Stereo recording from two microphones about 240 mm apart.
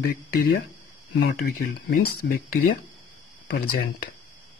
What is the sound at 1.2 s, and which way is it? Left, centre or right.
Speech, left.